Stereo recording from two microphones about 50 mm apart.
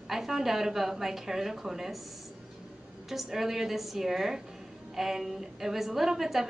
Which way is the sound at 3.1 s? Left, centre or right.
Centre.